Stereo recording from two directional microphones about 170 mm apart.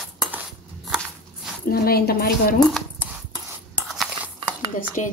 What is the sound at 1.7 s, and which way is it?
Speech, 65° left (ahead or behind).